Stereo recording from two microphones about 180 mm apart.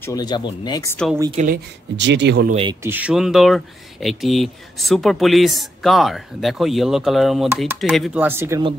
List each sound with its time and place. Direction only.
0.0 s speech: 20° left (ahead or behind)
1.3 s speech: 45° right (ahead or behind)
2.0 s speech: 75° right (ahead or behind)
2.5 s speech: 30° right (ahead or behind)
2.8 s speech: 10° right (ahead or behind)